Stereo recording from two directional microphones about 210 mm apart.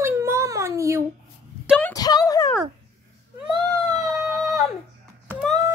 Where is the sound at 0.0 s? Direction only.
10° right (ahead or behind).